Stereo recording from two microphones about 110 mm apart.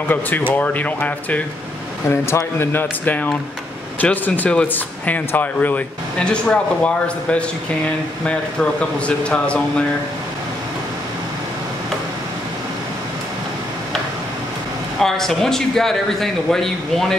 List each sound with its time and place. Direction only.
0.5 s speech: 15° left (ahead or behind)
9.0 s speech: 10° left (ahead or behind)
15.0 s a man's voice: 5° left (ahead or behind)